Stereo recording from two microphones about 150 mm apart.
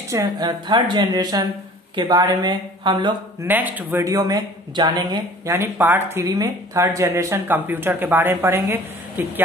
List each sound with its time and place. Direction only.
0.1 s a woman's voice: 20° right (ahead or behind)
3.4 s speech: 10° right (ahead or behind)